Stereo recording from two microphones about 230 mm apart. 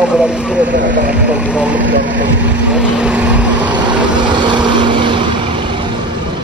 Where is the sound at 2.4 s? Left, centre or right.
Centre.